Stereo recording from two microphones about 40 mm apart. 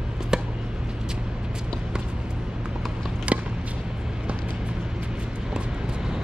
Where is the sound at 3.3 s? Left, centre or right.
Right.